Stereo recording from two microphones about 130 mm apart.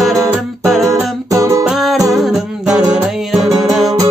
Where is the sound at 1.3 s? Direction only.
25° right (ahead or behind).